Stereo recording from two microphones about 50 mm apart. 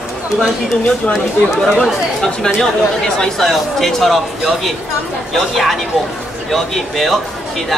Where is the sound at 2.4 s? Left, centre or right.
Centre.